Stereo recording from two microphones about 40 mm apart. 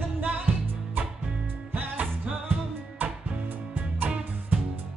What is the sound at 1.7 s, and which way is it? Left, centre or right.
Music, right.